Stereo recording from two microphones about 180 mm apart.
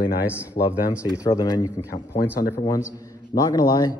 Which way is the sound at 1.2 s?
20° left (ahead or behind).